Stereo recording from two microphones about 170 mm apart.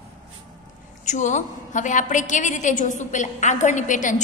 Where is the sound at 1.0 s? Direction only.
45° left (ahead or behind).